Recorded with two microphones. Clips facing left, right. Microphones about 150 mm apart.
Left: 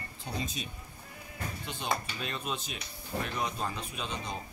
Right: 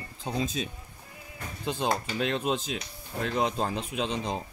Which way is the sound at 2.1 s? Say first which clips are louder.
Right 9 dB; 90° right.